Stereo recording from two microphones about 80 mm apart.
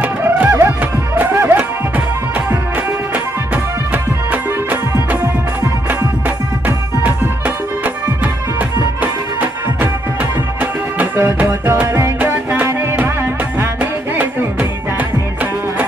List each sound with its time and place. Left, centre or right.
0.0 s music: right
0.5 s music: right
3.9 s music: right